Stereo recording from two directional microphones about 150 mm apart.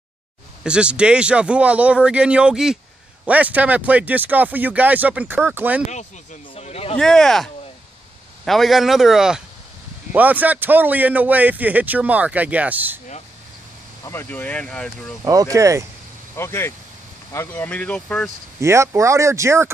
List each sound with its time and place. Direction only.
0.7 s speech: 5° right (ahead or behind)
6.5 s a sound: 40° left (ahead or behind)
7.0 s speech: 5° left (ahead or behind)
14.0 s speech: 15° left (ahead or behind)
15.2 s speech: 25° right (ahead or behind)
16.3 s speech: 15° left (ahead or behind)
18.6 s speech: 20° right (ahead or behind)